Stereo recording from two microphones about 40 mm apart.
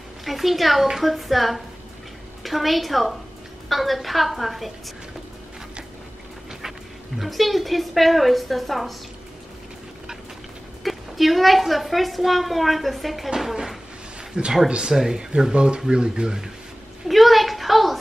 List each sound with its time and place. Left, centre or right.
0.2 s a woman's voice: centre
7.2 s a woman's voice: centre
10.8 s a woman's voice: centre
14.3 s speech: right
17.1 s a woman's voice: centre